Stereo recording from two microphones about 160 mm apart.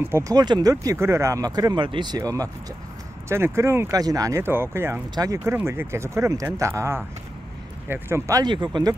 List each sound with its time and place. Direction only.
0.0 s speech: 20° right (ahead or behind)